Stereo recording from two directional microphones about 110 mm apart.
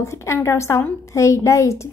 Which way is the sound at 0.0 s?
25° left (ahead or behind).